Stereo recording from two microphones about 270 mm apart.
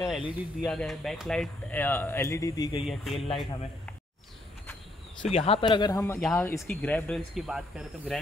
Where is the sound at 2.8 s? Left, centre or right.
Centre.